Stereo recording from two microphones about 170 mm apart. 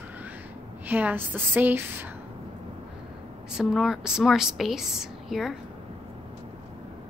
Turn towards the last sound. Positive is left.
turn(degrees=0)  # may be behind; listen again after turning